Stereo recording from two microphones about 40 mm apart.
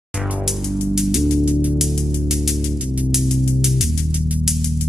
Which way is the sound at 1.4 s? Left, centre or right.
Right.